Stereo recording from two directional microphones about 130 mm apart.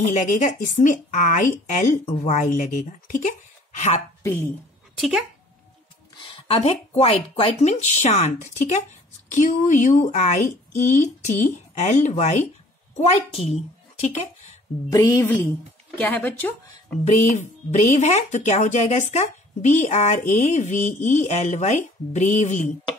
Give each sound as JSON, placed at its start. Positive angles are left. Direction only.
{"t": 0.0, "sound": "a woman's voice", "side_deg": 70}
{"t": 4.2, "sound": "a woman's voice", "side_deg": 20}
{"t": 4.9, "sound": "speech", "side_deg": 0}
{"t": 6.1, "sound": "speech", "side_deg": 40}
{"t": 7.7, "sound": "a woman's voice", "side_deg": 65}
{"t": 14.9, "sound": "a woman's voice", "side_deg": 25}
{"t": 16.0, "sound": "speech", "side_deg": 10}
{"t": 17.0, "sound": "speech", "side_deg": 60}